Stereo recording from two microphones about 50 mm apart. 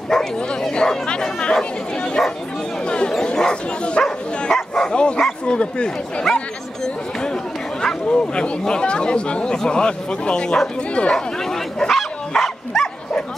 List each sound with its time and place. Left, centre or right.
0.1 s bow-wow: centre
2.9 s speech: centre
11.0 s bow-wow: centre